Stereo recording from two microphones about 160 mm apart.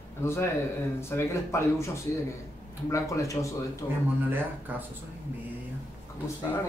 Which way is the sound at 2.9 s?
20° left (ahead or behind).